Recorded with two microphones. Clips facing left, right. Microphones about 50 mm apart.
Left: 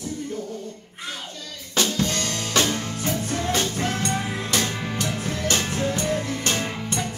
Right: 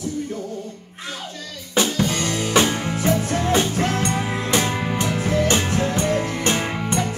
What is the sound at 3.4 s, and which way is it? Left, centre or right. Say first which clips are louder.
Music: right 3 dB; centre.